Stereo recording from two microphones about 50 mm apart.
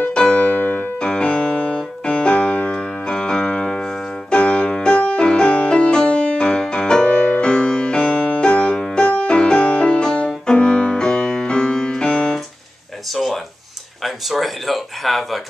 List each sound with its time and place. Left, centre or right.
0.0 s piano: centre
4.4 s music: left
13.1 s a sound: centre